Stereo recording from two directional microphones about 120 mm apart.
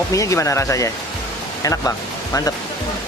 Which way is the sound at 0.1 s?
25° left (ahead or behind).